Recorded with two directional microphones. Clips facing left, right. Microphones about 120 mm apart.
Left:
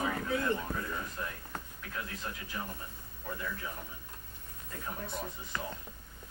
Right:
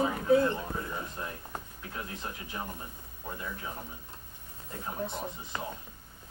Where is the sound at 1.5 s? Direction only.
25° right (ahead or behind).